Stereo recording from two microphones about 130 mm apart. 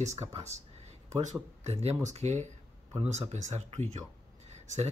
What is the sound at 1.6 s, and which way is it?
Speech, 55° right (ahead or behind).